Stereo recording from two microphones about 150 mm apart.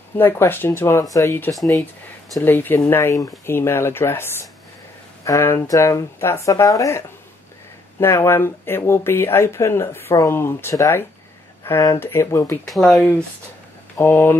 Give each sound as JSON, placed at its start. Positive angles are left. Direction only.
{"t": 0.2, "sound": "speech", "side_deg": 15}
{"t": 8.0, "sound": "speech", "side_deg": 15}
{"t": 12.6, "sound": "speech", "side_deg": 5}